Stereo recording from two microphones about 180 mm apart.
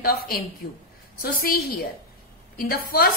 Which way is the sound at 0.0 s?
55° left (ahead or behind).